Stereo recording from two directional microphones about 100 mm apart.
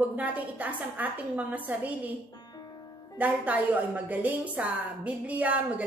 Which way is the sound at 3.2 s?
15° right (ahead or behind).